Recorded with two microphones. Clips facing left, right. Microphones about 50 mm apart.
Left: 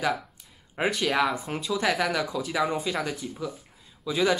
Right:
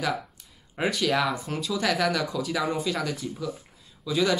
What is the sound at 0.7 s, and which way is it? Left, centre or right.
Speech, centre.